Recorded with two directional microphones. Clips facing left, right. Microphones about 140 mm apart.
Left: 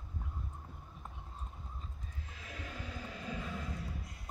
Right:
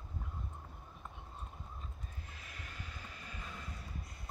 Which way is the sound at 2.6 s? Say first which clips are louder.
Left 7 dB; 90° left.